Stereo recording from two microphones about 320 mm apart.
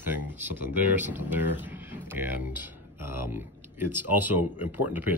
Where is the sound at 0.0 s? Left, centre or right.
Centre.